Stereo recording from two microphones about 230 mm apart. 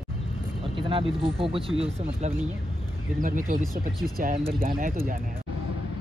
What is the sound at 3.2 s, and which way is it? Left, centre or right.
Speech, right.